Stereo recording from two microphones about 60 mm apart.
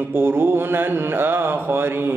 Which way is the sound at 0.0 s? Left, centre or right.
Right.